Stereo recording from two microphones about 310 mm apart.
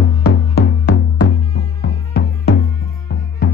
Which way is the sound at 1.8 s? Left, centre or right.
Left.